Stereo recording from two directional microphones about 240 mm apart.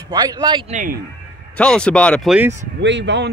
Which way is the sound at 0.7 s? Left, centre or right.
Right.